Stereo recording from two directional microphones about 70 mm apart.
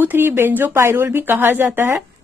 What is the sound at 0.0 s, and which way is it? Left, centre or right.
A woman's voice, right.